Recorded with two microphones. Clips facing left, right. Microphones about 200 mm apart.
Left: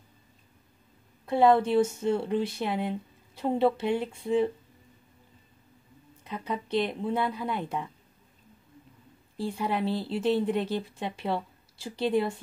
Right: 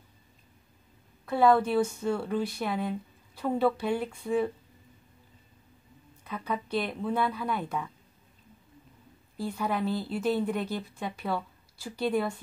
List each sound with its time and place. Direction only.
1.2 s speech: 25° left (ahead or behind)
6.2 s speech: 25° left (ahead or behind)
9.4 s speech: 30° left (ahead or behind)